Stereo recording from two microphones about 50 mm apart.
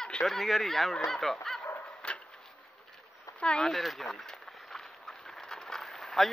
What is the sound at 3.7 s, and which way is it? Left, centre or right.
Speech, centre.